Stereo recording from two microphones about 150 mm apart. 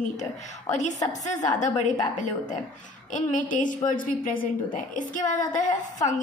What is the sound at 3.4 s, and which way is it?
A woman's voice, 60° left (ahead or behind).